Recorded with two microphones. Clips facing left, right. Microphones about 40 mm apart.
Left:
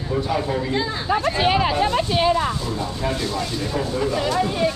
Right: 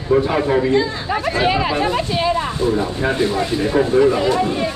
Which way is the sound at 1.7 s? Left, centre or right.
Right.